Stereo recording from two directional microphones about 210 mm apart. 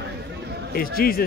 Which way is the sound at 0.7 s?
45° left (ahead or behind).